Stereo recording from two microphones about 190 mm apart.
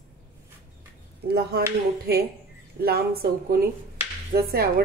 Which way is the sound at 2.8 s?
55° right (ahead or behind).